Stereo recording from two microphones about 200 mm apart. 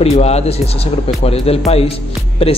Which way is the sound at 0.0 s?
30° left (ahead or behind).